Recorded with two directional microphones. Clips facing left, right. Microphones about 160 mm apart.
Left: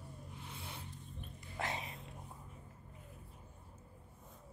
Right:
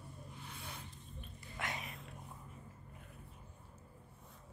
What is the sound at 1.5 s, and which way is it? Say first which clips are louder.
Dog: left 3 dB; 30° left (ahead or behind).